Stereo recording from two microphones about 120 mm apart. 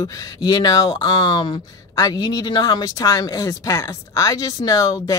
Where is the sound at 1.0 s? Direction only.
40° left (ahead or behind).